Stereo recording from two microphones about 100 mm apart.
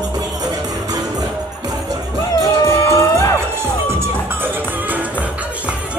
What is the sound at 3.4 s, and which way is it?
Music, 25° right (ahead or behind).